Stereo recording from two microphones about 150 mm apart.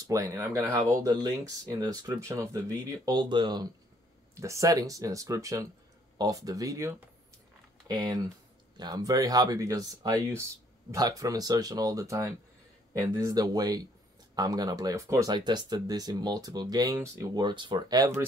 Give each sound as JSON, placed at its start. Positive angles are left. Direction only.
{"t": 0.0, "sound": "speech", "side_deg": -20}
{"t": 7.9, "sound": "speech", "side_deg": -25}